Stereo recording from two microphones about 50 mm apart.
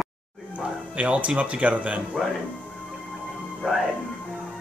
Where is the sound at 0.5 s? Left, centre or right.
Right.